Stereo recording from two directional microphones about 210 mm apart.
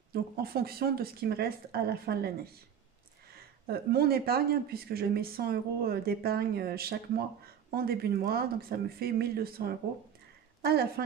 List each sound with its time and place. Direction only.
0.1 s speech: 45° right (ahead or behind)
3.3 s a woman's voice: 45° right (ahead or behind)